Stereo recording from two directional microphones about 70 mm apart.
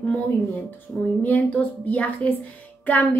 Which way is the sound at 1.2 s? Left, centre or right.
Left.